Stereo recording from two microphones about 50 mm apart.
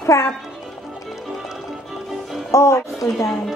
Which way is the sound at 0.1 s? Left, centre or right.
Left.